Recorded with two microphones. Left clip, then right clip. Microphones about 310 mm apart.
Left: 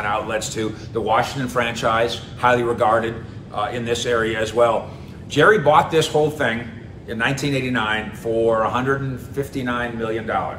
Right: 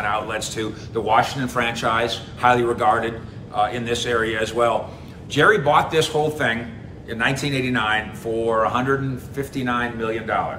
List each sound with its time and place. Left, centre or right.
0.0 s speech: centre